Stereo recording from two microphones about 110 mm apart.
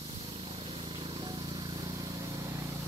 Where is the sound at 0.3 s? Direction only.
55° right (ahead or behind); by 2.6 s 30° right (ahead or behind).